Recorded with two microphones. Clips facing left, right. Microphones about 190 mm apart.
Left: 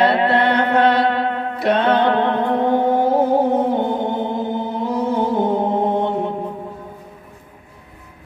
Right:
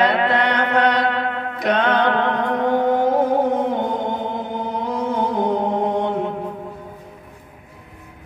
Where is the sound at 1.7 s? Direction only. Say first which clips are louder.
Left 2 dB; 30° left (ahead or behind).